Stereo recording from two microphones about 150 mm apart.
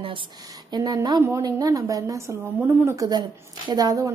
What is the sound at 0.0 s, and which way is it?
A woman's voice, 35° right (ahead or behind).